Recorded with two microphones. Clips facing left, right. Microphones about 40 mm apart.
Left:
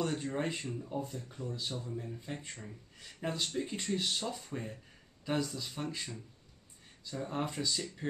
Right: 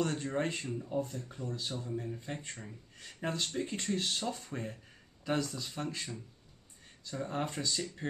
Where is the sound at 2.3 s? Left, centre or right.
Centre.